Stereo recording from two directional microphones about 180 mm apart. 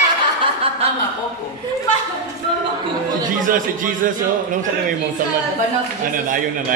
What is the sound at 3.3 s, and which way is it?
Speech, 50° right (ahead or behind).